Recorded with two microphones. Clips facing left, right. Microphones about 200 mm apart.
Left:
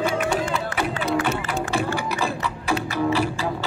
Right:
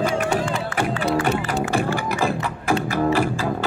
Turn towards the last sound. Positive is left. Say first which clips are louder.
# right 2 dB
turn(degrees=-50)  # may be behind; listen again after turning